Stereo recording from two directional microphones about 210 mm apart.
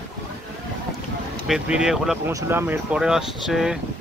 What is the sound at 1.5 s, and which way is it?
Speech, 5° right (ahead or behind).